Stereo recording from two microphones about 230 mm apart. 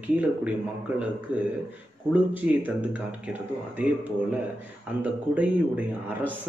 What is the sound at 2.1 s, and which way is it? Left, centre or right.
Speech, centre.